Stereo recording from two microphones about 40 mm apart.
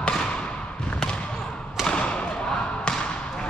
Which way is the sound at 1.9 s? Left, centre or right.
Left.